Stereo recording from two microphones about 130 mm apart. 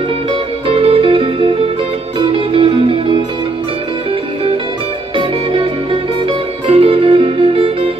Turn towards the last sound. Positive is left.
turn(degrees=-45)  # may be behind; listen again after turning